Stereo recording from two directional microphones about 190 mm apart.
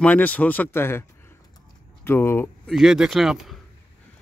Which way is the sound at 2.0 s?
10° left (ahead or behind).